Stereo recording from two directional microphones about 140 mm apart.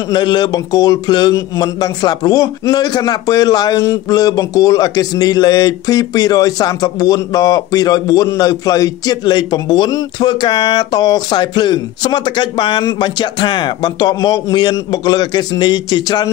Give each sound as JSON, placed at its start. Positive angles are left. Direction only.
{"t": 0.1, "sound": "speech", "side_deg": 30}